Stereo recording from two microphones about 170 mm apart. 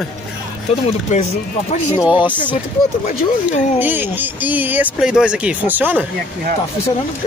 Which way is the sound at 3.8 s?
10° right (ahead or behind).